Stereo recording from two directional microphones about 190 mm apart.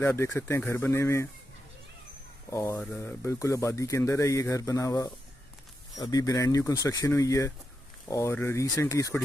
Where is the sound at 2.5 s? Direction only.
15° left (ahead or behind).